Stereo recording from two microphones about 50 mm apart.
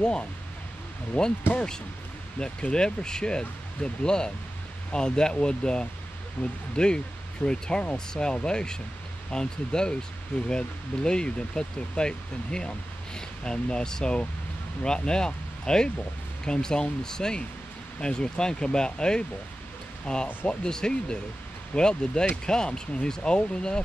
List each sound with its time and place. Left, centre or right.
0.0 s speech: centre
1.1 s speech: left
1.5 s speech: centre
6.4 s speech: left
6.8 s speech: centre